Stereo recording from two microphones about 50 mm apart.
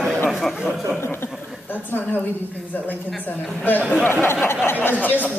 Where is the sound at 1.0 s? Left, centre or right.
Left.